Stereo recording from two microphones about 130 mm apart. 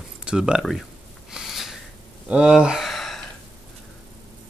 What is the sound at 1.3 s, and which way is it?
Snort, 5° right (ahead or behind).